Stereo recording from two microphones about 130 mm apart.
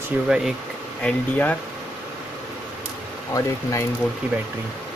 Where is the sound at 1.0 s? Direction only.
10° left (ahead or behind).